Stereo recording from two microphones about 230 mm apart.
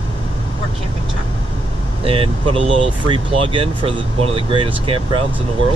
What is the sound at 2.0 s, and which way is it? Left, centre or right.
Speech, right.